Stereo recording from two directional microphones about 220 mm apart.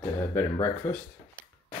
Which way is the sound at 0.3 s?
10° left (ahead or behind).